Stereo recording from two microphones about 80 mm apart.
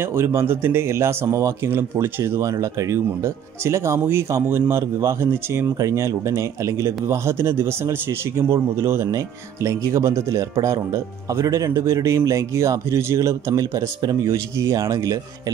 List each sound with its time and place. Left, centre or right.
0.0 s speech: right
2.2 s speech: right
14.2 s speech: right